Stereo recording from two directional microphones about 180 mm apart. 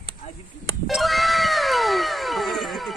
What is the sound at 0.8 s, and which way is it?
Cat, centre (ahead or behind).